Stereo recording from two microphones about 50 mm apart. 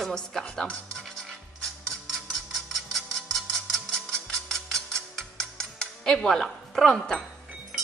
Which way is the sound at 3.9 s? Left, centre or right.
Centre.